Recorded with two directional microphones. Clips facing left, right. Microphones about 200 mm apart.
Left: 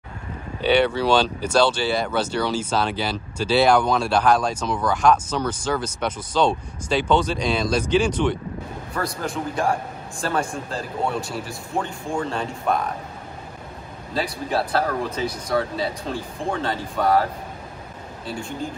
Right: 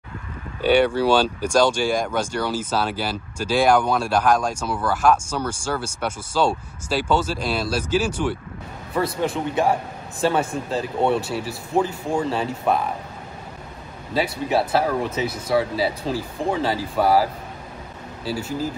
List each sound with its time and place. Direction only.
0.6 s speech: 10° right (ahead or behind)
14.1 s speech: 5° right (ahead or behind)